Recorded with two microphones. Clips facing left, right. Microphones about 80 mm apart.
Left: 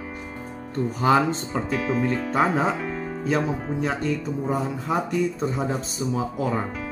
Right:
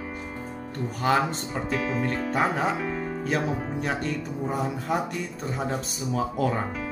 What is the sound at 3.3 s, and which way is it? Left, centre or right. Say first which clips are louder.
Speech: left 4 dB; left.